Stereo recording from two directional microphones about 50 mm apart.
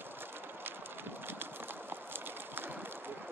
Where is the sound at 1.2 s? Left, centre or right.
Right.